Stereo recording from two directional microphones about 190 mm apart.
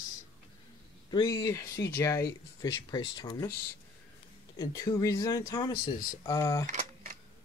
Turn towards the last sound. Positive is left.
turn(degrees=-40)  # may be behind; listen again after turning